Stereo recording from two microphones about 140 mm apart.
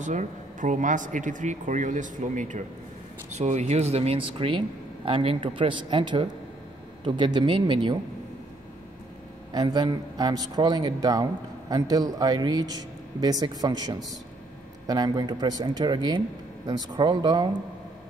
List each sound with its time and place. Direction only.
0.0 s speech: 60° right (ahead or behind); by 8.0 s 35° right (ahead or behind)
9.5 s speech: 30° right (ahead or behind)